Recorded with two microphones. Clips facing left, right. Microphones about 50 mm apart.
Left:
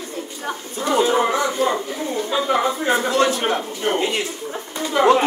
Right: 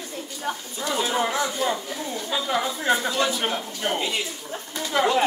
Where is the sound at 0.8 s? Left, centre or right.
Left.